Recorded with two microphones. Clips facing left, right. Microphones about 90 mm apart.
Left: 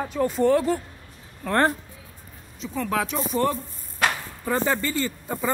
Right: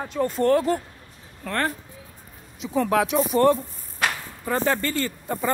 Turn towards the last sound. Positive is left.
turn(degrees=0)  # may be behind; listen again after turning